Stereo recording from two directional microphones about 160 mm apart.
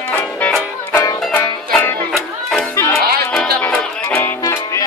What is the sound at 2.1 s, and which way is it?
Music, 5° left (ahead or behind).